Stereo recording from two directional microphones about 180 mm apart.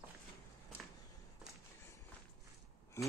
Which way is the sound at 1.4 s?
5° right (ahead or behind).